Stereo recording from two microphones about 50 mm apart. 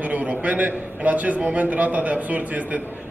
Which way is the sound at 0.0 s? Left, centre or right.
Right.